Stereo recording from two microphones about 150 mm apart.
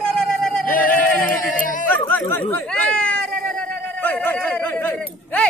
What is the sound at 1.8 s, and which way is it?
Chatter, 10° left (ahead or behind).